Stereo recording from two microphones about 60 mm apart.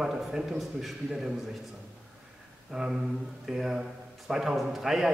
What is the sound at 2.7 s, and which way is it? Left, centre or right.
A man's voice, centre.